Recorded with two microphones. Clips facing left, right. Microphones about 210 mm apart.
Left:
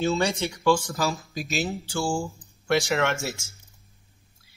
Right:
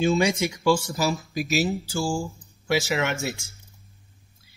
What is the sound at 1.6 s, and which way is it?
Speech, centre (ahead or behind).